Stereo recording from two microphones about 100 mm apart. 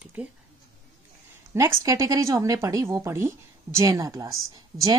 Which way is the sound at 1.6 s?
30° right (ahead or behind).